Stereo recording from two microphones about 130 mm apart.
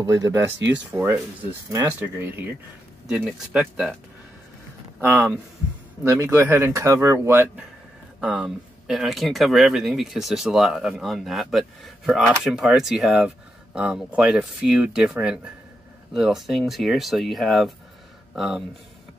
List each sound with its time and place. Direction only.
0.0 s speech: 25° right (ahead or behind)
3.1 s speech: 5° right (ahead or behind)
5.0 s speech: 10° right (ahead or behind)